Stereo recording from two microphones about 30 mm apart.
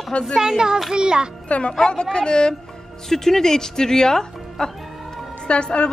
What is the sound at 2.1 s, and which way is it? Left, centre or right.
Speech, left.